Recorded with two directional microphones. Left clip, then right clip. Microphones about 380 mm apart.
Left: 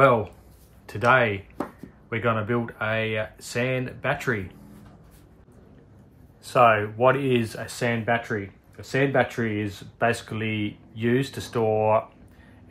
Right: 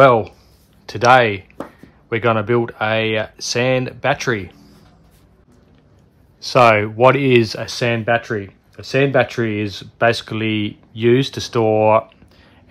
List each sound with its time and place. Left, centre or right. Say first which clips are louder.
0.0 s speech: right 8 dB; centre
6.4 s speech: right 6 dB; right